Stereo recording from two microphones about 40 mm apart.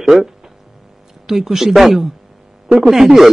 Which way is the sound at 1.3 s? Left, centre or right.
Centre.